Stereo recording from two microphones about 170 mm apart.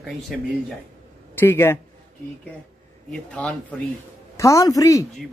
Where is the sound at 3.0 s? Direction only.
5° left (ahead or behind).